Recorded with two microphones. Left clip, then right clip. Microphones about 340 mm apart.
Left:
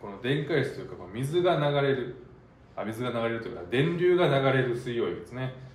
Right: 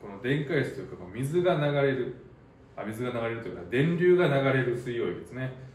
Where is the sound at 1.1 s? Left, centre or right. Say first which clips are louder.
Left 1 dB; centre.